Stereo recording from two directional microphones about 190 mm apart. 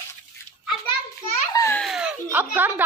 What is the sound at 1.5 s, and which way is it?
Baby laughter, 15° left (ahead or behind).